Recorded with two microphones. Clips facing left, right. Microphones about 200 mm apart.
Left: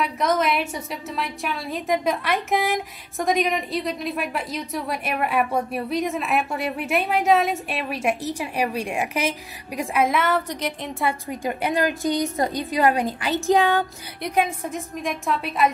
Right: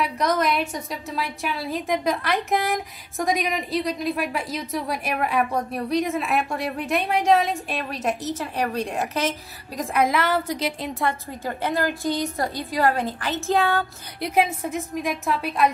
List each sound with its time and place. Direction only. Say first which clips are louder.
0.0 s a woman's voice: left 1 dB; centre (ahead or behind)
9.8 s a woman's voice: even; centre (ahead or behind)
11.2 s a woman's voice: left 2 dB; 15° left (ahead or behind)
14.2 s a woman's voice: right 1 dB; 5° right (ahead or behind)